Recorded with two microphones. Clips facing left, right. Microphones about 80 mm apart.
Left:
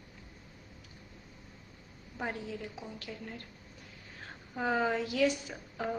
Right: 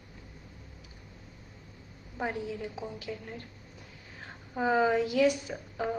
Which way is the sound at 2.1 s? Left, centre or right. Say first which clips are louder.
Right 4 dB; centre.